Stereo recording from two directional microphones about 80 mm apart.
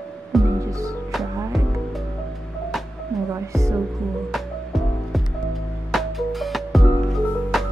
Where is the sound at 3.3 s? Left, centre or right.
Right.